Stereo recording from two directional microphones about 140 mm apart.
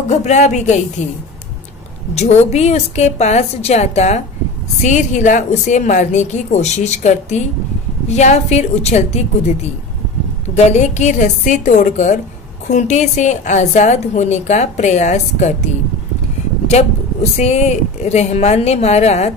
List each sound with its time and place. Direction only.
0.1 s a woman's voice: 55° left (ahead or behind)
2.1 s a woman's voice: 50° left (ahead or behind)
16.6 s speech: 50° left (ahead or behind)